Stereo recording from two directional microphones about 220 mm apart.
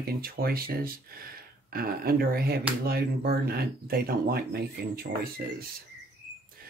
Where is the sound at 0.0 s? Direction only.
45° right (ahead or behind).